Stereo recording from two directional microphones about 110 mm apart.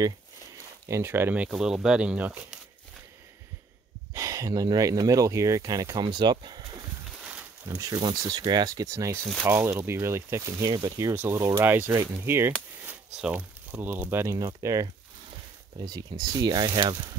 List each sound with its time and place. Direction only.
0.8 s speech: 25° right (ahead or behind)
1.5 s speech: 5° right (ahead or behind)
4.1 s speech: 30° right (ahead or behind)
14.2 s speech: 30° right (ahead or behind)